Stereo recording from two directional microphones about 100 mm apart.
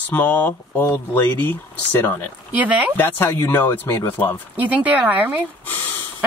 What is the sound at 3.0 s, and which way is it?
Speech, 20° left (ahead or behind).